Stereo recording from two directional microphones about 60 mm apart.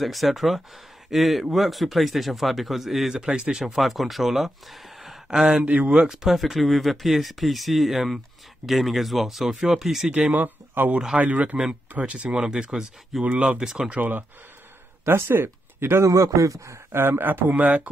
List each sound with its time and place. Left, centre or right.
0.0 s speech: centre
3.2 s speech: centre
5.7 s speech: right
6.1 s speech: centre
10.3 s speech: right; by 13.9 s centre
15.0 s speech: right
16.1 s a man's voice: right
17.2 s speech: right